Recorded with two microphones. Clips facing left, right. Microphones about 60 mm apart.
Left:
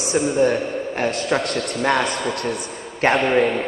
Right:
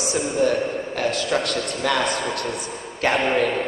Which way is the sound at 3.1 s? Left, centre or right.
Centre.